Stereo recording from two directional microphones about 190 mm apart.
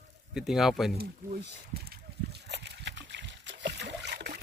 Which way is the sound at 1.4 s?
60° right (ahead or behind).